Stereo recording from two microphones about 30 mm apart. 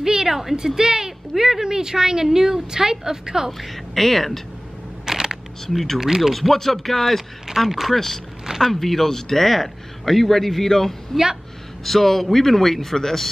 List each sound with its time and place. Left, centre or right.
0.0 s a sound: right
0.3 s speech: centre
0.7 s a woman's voice: centre
3.5 s a man's voice: centre
5.0 s single-lens reflex camera: centre
5.7 s speech: centre
5.9 s speech: centre
6.3 s a man's voice: centre
7.9 s a man's voice: centre